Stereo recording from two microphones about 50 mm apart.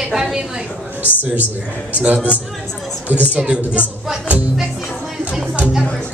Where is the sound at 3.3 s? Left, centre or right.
Right.